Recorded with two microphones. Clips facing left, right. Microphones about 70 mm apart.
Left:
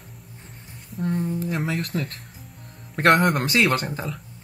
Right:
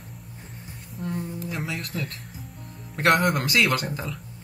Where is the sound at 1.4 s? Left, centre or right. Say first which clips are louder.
Left 5 dB; left.